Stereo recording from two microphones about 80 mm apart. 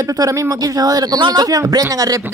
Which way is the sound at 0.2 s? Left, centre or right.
Right.